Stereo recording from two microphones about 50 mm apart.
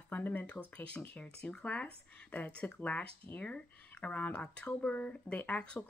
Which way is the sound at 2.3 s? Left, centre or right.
Left.